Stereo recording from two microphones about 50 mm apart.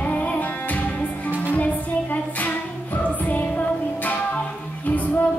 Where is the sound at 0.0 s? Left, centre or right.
Left.